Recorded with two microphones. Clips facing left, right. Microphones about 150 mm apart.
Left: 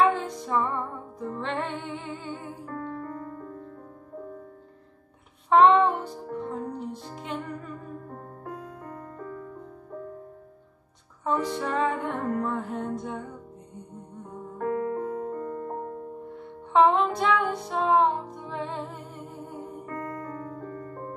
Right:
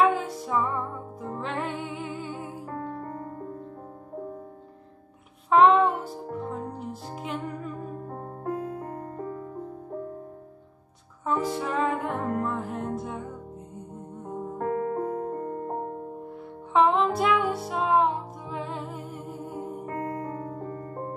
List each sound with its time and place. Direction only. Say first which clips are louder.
0.0 s music: even; 5° right (ahead or behind)
2.6 s music: even; 30° right (ahead or behind)
5.5 s music: even; centre (ahead or behind)
8.1 s music: right 7 dB; 45° right (ahead or behind)
11.2 s music: even; 5° right (ahead or behind)
14.3 s music: right 1 dB; 40° right (ahead or behind)
15.4 s music: right 1 dB; 30° right (ahead or behind)
16.7 s music: left 1 dB; centre (ahead or behind)
19.9 s keyboard: right 2 dB; 25° right (ahead or behind)